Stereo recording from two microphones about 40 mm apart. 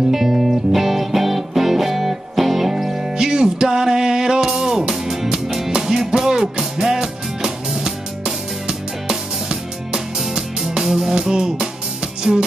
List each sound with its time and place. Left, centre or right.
0.1 s music: centre